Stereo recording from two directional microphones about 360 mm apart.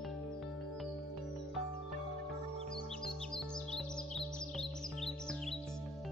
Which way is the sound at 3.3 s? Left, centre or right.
Centre.